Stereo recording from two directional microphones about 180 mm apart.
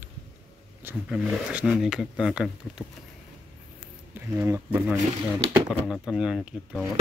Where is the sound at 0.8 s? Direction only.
5° right (ahead or behind).